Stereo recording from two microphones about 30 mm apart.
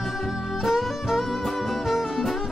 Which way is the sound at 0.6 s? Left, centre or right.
Centre.